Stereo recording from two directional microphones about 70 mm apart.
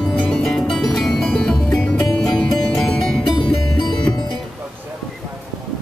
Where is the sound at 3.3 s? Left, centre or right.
Left.